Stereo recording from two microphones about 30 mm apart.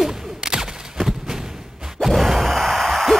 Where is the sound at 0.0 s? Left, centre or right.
Centre.